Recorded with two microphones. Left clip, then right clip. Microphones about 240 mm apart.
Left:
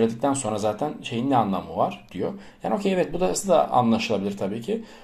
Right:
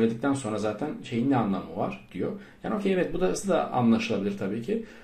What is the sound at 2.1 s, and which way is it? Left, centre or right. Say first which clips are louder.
Speech: left 3 dB; left.